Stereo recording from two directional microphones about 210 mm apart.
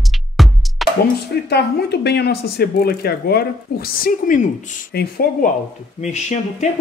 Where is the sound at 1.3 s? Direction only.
50° left (ahead or behind).